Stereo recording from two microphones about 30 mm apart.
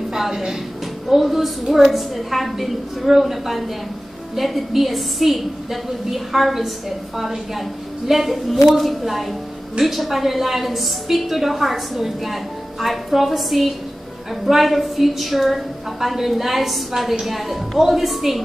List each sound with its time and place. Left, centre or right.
0.1 s music: centre
1.0 s a woman's voice: centre